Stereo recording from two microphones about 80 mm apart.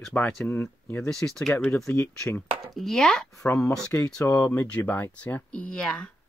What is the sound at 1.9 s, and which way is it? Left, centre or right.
Speech, left.